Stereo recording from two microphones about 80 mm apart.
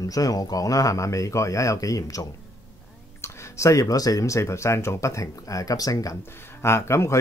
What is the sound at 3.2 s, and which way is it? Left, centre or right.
Speech, left.